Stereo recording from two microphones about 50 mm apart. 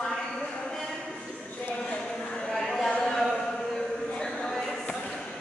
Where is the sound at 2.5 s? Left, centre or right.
Centre.